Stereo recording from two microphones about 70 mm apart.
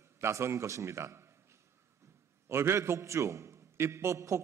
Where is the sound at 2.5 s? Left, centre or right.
Right.